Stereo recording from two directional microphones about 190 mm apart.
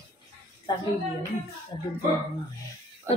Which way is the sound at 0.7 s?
25° left (ahead or behind).